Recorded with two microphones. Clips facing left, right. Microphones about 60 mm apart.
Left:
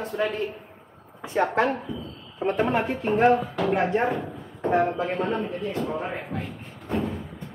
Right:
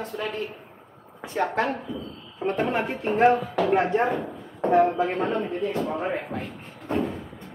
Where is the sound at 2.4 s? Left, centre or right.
Centre.